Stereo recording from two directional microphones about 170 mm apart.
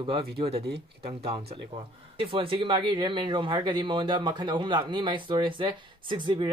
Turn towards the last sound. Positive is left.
turn(degrees=-30)  # may be behind; listen again after turning